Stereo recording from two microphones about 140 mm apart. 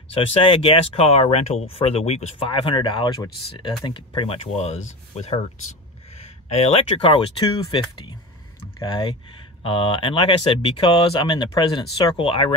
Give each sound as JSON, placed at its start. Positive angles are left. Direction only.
{"t": 0.1, "sound": "speech", "side_deg": 40}
{"t": 6.5, "sound": "speech", "side_deg": 50}
{"t": 8.7, "sound": "speech", "side_deg": 30}